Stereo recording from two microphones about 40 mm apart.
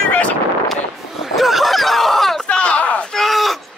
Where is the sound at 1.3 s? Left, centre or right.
Centre.